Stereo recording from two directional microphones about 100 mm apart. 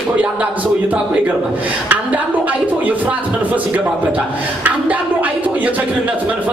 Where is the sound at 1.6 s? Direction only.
15° right (ahead or behind).